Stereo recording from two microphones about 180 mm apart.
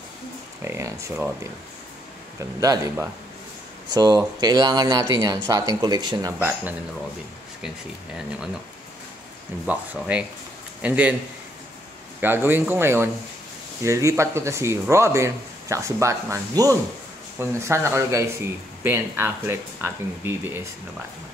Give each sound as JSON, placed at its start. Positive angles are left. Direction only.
{"t": 0.7, "sound": "speech", "side_deg": -15}
{"t": 2.6, "sound": "speech", "side_deg": -20}
{"t": 9.7, "sound": "speech", "side_deg": -5}
{"t": 12.2, "sound": "speech", "side_deg": -10}